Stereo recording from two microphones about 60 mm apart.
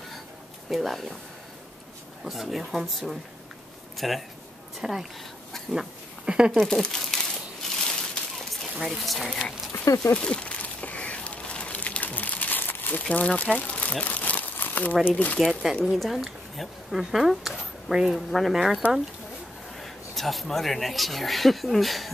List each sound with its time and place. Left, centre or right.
0.7 s speech: centre
2.2 s speech: centre
5.7 s a sound: centre
6.5 s speech: centre
7.7 s a sound: centre
8.7 s speech: centre
10.1 s crumpling: centre
13.0 s speech: left
14.0 s crumpling: left
15.4 s speech: centre
19.8 s speech: centre